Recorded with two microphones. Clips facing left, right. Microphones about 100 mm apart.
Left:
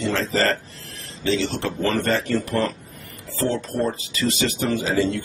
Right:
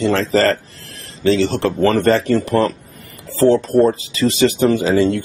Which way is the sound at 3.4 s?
40° right (ahead or behind).